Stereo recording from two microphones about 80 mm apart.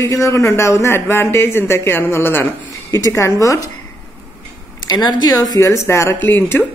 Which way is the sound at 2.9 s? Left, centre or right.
Left.